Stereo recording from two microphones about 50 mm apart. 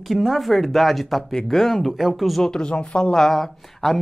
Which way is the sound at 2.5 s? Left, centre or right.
Centre.